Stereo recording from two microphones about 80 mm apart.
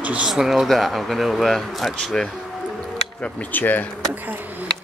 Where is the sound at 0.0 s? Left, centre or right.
Centre.